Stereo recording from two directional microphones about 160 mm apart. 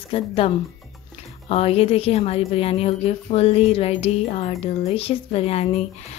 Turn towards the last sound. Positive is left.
turn(degrees=40)  # may be behind; listen again after turning